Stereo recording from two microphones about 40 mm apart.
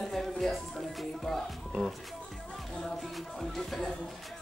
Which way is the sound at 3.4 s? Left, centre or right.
Centre.